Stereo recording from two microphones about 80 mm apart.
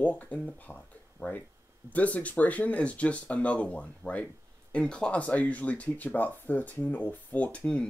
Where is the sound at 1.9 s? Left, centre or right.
Centre.